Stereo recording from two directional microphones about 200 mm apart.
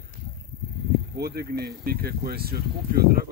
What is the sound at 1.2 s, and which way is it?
Speech, 50° right (ahead or behind).